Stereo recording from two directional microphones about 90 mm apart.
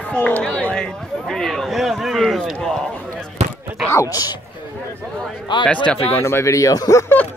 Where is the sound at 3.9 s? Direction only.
40° left (ahead or behind).